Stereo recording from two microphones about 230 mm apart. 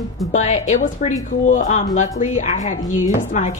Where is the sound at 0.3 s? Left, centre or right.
Left.